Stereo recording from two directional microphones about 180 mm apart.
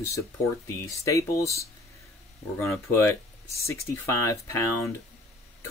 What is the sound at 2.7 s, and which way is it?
Speech, 15° left (ahead or behind).